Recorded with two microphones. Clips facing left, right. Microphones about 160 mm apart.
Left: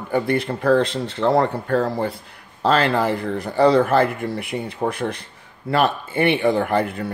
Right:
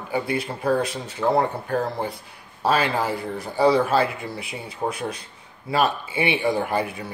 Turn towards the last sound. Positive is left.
turn(degrees=60)  # may be behind; listen again after turning